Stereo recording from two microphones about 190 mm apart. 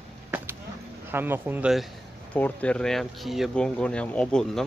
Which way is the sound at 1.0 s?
10° right (ahead or behind).